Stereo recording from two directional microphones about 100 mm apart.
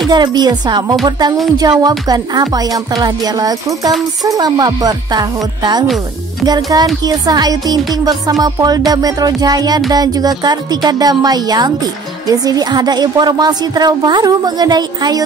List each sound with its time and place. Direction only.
0.1 s a woman's voice: 45° right (ahead or behind)